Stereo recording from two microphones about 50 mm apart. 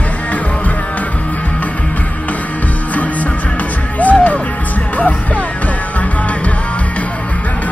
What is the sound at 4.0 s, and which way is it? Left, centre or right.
Music, left.